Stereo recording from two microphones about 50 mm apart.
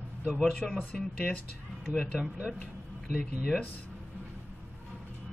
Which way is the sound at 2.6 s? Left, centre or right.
Left.